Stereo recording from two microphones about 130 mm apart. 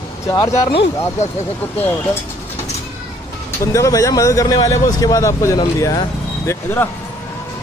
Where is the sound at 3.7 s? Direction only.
25° left (ahead or behind).